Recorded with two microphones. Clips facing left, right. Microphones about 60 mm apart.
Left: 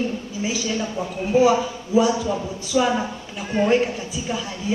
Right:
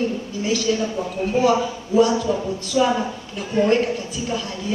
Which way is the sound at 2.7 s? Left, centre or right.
Left.